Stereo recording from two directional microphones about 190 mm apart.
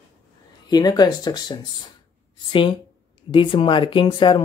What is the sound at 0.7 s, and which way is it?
Speech, 20° left (ahead or behind).